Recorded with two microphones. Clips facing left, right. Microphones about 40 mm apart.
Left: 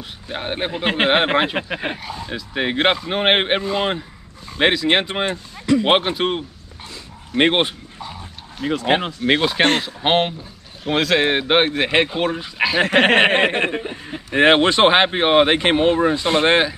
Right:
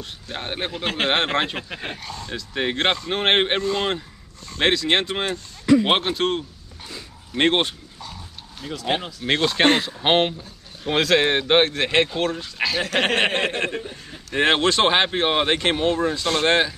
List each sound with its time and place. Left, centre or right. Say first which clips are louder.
0.0 s a man's voice: left 3 dB; centre
8.6 s speech: left 7 dB; left
9.2 s a man's voice: right 1 dB; centre
12.8 s speech: left 7 dB; left